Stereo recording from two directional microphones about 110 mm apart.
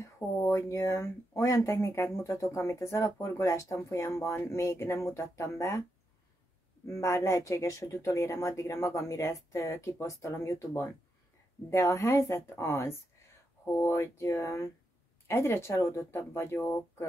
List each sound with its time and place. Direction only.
0.0 s speech: 25° left (ahead or behind)
6.9 s speech: 25° left (ahead or behind)